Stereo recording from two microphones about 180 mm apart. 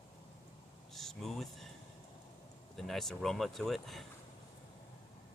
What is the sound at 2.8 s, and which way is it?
Speech, centre (ahead or behind).